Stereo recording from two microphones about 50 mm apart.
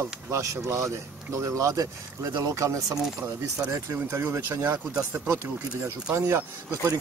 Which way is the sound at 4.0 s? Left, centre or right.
Right.